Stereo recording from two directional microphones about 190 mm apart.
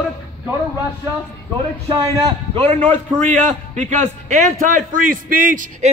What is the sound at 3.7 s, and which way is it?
A man's voice, 40° right (ahead or behind).